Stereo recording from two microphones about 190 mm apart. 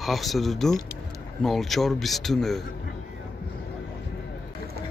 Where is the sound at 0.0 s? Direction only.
Centre (ahead or behind).